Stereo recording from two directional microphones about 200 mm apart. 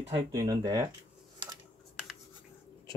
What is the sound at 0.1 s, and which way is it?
Speech, 20° right (ahead or behind).